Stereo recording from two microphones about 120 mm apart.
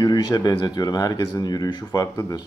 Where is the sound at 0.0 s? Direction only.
35° left (ahead or behind).